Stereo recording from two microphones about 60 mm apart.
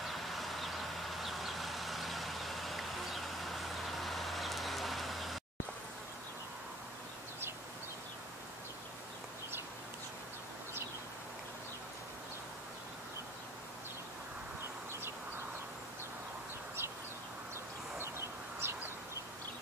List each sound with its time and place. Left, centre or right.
0.0 s vehicle: centre
17.9 s bird: right